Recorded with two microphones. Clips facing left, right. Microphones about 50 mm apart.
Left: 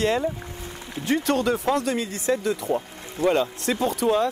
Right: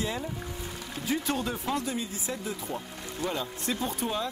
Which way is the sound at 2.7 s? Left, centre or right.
Left.